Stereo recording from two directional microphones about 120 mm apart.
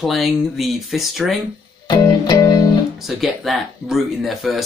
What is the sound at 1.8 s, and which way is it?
Music, 35° left (ahead or behind).